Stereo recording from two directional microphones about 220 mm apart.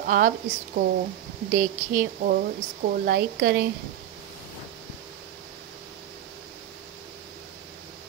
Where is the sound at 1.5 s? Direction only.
40° right (ahead or behind).